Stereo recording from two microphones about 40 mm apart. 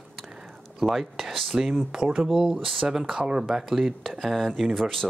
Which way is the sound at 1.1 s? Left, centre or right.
Centre.